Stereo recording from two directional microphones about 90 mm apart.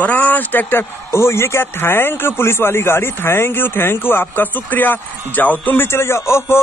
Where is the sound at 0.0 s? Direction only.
20° left (ahead or behind).